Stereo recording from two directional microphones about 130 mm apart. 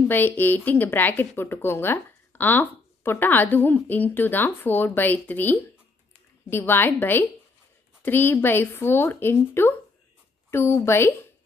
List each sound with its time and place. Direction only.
0.1 s a woman's voice: 15° left (ahead or behind)